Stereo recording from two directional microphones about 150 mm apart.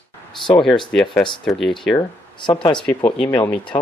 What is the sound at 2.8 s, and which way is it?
Speech, 10° left (ahead or behind).